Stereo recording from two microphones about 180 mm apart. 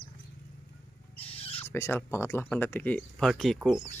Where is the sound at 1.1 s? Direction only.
35° left (ahead or behind).